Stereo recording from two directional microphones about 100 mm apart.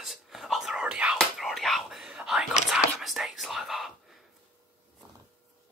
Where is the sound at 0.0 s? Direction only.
5° right (ahead or behind).